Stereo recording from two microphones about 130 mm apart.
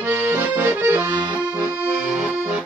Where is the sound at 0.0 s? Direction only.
20° right (ahead or behind).